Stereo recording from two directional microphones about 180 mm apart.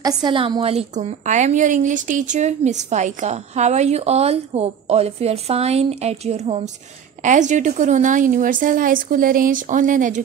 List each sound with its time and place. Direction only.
0.0 s a woman's voice: 25° right (ahead or behind); by 10.2 s 45° right (ahead or behind)